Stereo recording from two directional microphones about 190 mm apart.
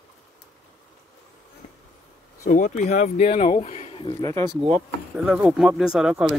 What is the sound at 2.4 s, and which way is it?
Speech, 40° left (ahead or behind).